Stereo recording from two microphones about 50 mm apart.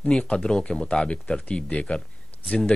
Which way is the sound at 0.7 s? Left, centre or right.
Centre.